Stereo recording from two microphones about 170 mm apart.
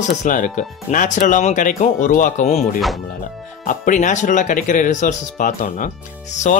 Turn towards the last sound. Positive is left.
turn(degrees=50)  # may be behind; listen again after turning